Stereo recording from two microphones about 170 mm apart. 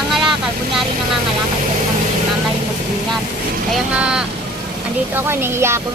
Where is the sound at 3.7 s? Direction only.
5° right (ahead or behind).